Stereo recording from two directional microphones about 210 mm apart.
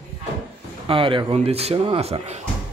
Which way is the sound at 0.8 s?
25° right (ahead or behind).